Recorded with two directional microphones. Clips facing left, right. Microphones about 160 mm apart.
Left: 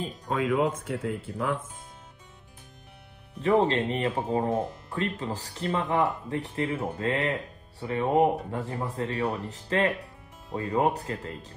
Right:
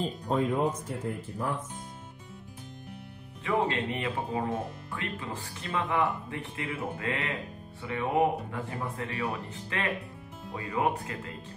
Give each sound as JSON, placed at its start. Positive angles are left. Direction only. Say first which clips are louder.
{"t": 0.4, "sound": "speech", "louder": "left 3 dB", "side_deg": 90}
{"t": 3.3, "sound": "speech", "louder": "left 6 dB", "side_deg": 35}